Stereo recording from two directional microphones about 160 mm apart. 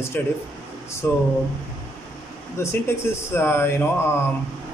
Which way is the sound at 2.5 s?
15° left (ahead or behind).